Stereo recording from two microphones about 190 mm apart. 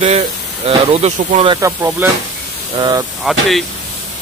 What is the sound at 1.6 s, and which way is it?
Speech, 10° right (ahead or behind).